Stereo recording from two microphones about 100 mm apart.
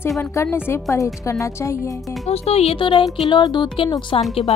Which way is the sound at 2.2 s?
90° left.